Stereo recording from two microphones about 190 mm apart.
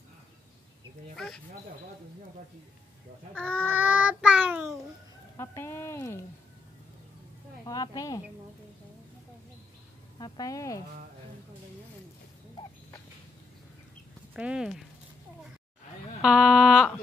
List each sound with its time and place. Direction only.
1.1 s a sound: centre (ahead or behind)
3.3 s speech: 5° left (ahead or behind)
3.6 s child singing: 10° right (ahead or behind)
5.4 s speech: 15° left (ahead or behind)
7.6 s speech: 20° left (ahead or behind)
10.1 s speech: 20° left (ahead or behind)
14.3 s speech: 5° right (ahead or behind)
16.2 s speech: 5° right (ahead or behind)